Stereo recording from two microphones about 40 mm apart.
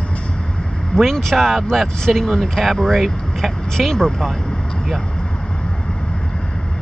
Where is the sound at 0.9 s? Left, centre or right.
Left.